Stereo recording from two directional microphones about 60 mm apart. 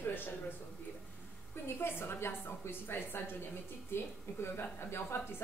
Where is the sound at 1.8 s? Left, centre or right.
Left.